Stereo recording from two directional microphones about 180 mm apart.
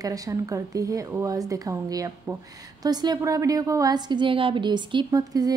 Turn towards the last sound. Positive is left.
turn(degrees=-20)  # may be behind; listen again after turning